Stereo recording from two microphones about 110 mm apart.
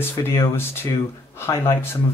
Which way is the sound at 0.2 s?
25° left (ahead or behind).